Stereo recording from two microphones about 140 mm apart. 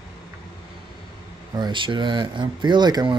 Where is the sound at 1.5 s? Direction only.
35° right (ahead or behind).